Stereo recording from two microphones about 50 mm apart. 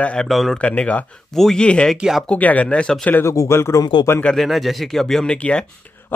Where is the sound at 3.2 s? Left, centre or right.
Left.